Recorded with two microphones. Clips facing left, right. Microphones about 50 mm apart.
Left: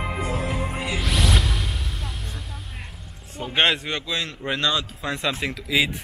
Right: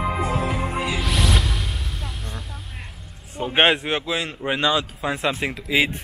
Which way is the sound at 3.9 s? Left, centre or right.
Centre.